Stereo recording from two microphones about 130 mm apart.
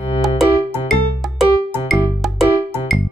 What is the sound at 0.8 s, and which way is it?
Music, centre (ahead or behind).